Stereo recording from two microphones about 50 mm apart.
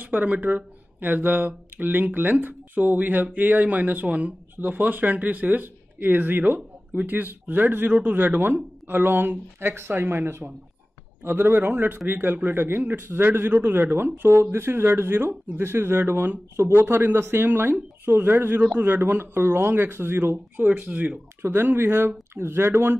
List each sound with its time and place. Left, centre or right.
0.0 s speech: right
7.9 s speech: right
8.4 s speech: right
16.5 s speech: right
16.8 s speech: right
20.6 s speech: right
21.4 s speech: right